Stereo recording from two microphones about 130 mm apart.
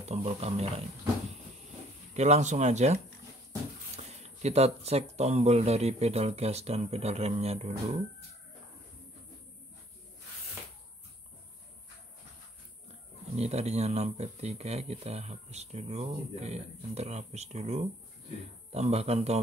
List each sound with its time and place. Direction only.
0.0 s speech: 55° right (ahead or behind)
2.1 s speech: 60° right (ahead or behind)
13.4 s speech: 55° right (ahead or behind)